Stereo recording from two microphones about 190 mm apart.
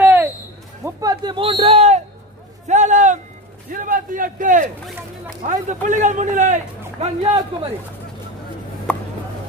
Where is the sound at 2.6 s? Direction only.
40° right (ahead or behind).